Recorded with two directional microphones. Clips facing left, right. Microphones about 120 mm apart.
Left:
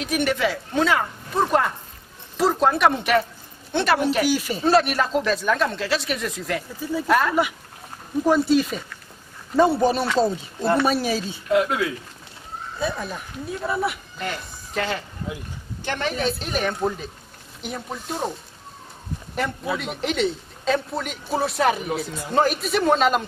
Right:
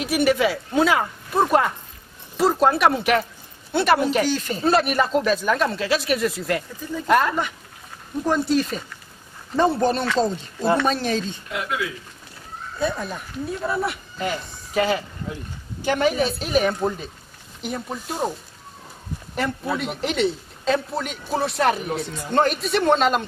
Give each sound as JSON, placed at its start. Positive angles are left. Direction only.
{"t": 0.0, "sound": "a man's voice", "side_deg": -5}
{"t": 4.7, "sound": "a man's voice", "side_deg": 0}
{"t": 11.5, "sound": "speech", "side_deg": 35}
{"t": 12.7, "sound": "a man's voice", "side_deg": 0}
{"t": 19.3, "sound": "a man's voice", "side_deg": 0}